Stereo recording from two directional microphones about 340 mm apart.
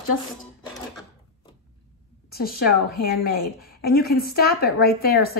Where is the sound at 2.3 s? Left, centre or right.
Left.